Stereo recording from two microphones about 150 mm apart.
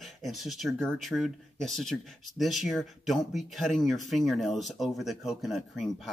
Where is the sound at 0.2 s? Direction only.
Centre (ahead or behind).